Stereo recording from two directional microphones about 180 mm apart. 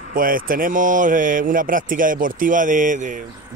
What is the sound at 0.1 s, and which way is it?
Speech, 50° right (ahead or behind).